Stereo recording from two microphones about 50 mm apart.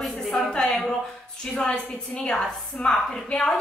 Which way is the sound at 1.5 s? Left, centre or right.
Centre.